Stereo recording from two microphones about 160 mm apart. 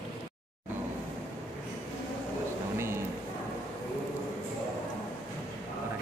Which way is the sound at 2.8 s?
15° right (ahead or behind).